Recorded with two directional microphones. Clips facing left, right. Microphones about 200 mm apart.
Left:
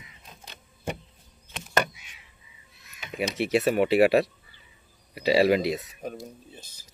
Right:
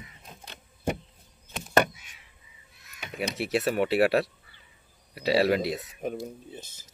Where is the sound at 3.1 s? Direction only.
Centre (ahead or behind).